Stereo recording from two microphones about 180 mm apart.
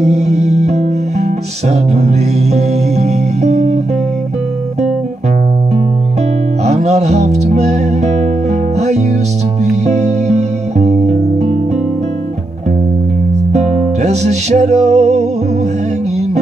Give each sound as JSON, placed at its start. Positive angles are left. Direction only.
{"t": 0.0, "sound": "music", "side_deg": -40}
{"t": 6.6, "sound": "music", "side_deg": -40}
{"t": 13.5, "sound": "music", "side_deg": -40}